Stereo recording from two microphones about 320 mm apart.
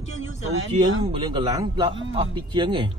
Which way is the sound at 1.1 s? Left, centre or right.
Centre.